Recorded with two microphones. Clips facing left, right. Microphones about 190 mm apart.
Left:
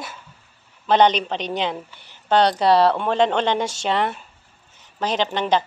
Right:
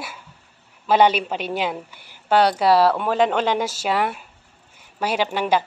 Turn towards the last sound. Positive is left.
turn(degrees=-10)  # may be behind; listen again after turning